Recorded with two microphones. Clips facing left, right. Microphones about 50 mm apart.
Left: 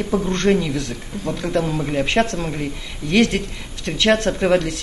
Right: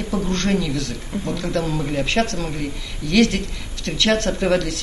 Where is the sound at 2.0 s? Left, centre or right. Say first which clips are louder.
Left 2 dB; left.